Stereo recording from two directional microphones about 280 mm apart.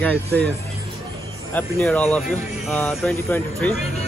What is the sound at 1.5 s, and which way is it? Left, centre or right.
Speech, centre.